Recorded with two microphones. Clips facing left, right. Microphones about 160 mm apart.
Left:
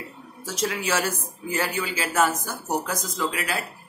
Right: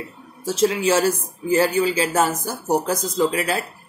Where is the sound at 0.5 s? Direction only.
30° right (ahead or behind).